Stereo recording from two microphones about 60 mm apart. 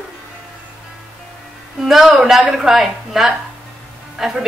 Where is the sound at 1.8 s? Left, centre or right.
Centre.